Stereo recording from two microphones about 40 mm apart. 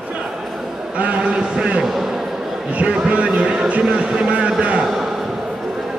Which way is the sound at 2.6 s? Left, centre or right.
Right.